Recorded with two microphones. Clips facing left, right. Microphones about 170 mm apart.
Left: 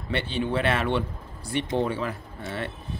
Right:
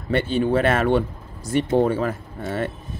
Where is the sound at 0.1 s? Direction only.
45° right (ahead or behind).